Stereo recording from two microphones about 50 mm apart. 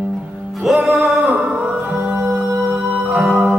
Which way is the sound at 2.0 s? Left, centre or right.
Right.